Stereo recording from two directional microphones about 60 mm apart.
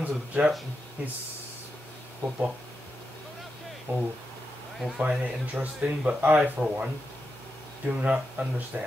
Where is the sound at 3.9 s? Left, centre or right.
Right.